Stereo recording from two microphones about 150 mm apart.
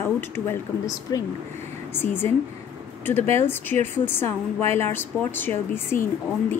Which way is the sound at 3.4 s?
15° left (ahead or behind).